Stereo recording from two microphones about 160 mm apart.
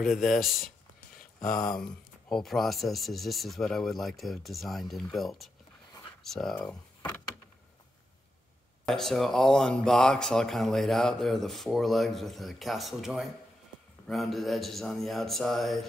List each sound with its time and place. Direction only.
0.0 s speech: centre (ahead or behind)
1.4 s speech: 25° left (ahead or behind)
1.8 s speech: 5° left (ahead or behind)
7.0 s door: 25° left (ahead or behind)
8.8 s speech: centre (ahead or behind)